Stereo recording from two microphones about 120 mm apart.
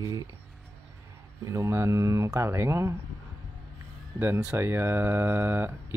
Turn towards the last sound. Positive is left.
turn(degrees=-15)  # may be behind; listen again after turning